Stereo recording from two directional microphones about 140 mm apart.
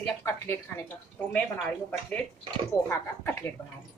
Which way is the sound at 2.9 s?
15° left (ahead or behind).